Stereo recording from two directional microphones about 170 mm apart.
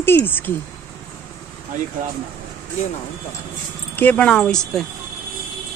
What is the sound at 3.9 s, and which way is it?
Speech, 10° left (ahead or behind).